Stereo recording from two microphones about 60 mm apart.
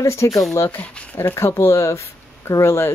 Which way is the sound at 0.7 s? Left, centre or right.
Left.